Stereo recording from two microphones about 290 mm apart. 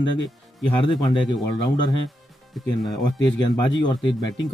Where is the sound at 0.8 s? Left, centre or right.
Centre.